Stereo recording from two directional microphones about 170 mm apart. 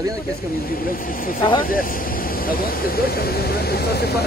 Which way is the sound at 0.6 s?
55° left (ahead or behind).